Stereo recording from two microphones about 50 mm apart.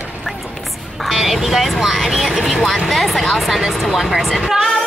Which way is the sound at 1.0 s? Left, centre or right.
Centre.